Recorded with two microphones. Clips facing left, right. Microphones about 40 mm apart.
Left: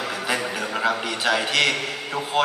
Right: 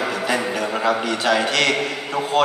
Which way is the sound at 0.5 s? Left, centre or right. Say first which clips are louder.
Right 3 dB; centre.